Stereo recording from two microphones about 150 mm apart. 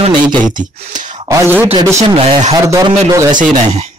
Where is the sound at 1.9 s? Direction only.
45° right (ahead or behind).